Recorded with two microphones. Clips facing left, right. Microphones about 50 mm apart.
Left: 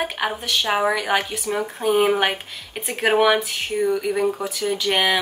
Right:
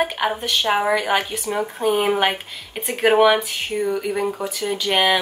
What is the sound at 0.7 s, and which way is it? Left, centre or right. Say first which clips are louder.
Speech: even; centre.